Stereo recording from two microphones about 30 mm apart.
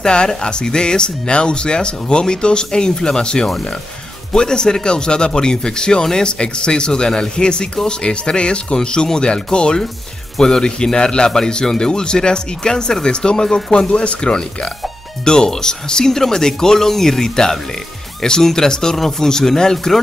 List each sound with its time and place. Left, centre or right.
0.0 s speech: left